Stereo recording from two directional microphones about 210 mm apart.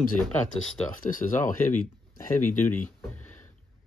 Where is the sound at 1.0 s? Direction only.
40° left (ahead or behind).